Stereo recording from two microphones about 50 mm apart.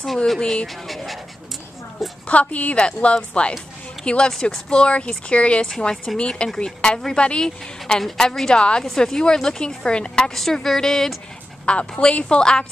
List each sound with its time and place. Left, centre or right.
0.4 s speech: centre
0.8 s speech: centre
2.2 s speech: left
5.7 s speech: centre
7.8 s speech: centre
10.3 s speech: centre
11.6 s speech: left